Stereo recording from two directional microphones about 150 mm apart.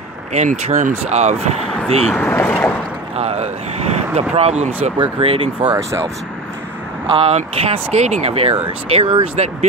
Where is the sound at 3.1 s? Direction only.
45° right (ahead or behind).